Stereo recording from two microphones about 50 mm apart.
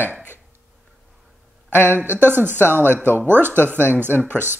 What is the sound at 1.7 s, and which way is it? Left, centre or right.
Speech, left.